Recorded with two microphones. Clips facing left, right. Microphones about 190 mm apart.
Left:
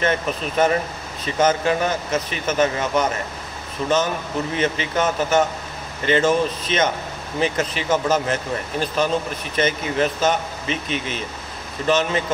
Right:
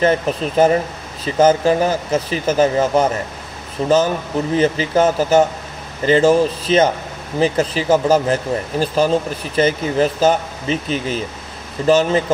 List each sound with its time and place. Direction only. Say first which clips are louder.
0.0 s speech: right 6 dB; 35° right (ahead or behind)